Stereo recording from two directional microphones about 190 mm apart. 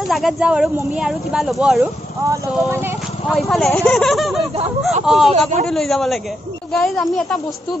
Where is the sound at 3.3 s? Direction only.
Centre (ahead or behind).